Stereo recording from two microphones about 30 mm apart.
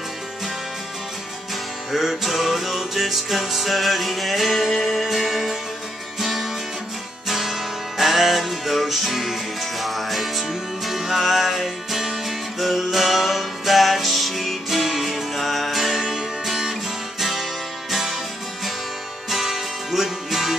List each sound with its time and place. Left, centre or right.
1.9 s music: centre
17.2 s music: centre
19.3 s music: centre